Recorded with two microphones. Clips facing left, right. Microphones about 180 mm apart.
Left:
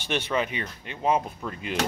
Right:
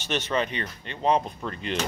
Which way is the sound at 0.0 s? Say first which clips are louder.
Even; 10° left (ahead or behind).